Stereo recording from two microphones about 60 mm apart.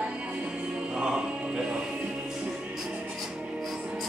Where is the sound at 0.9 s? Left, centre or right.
Centre.